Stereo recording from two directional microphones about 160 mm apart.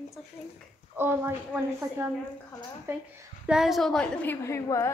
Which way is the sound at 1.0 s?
15° right (ahead or behind).